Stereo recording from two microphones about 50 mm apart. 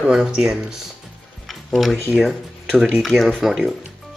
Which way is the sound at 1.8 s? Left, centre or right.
Centre.